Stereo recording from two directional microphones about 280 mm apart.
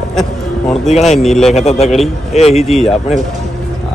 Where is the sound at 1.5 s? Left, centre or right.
Left.